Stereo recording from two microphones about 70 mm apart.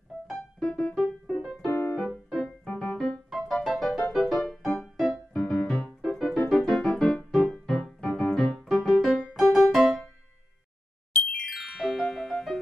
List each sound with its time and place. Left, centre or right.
0.3 s music: centre
1.3 s music: centre
1.7 s music: left
2.0 s music: centre
2.6 s keyboard: centre
3.3 s music: centre
6.3 s keyboard: centre
7.2 s music: centre
11.3 s music: centre